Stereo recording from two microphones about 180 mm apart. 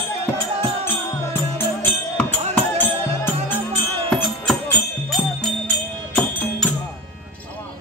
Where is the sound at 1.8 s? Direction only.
10° left (ahead or behind).